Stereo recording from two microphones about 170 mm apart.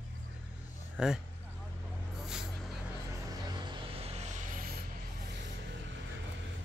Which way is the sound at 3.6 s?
35° right (ahead or behind).